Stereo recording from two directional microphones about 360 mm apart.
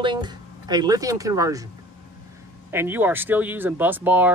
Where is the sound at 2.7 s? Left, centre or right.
Centre.